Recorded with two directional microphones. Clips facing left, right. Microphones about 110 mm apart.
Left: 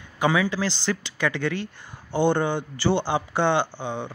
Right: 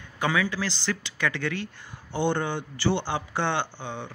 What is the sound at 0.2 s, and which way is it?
Speech, 20° left (ahead or behind).